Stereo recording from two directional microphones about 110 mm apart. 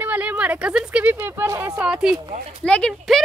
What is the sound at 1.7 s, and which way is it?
Speech, 10° right (ahead or behind).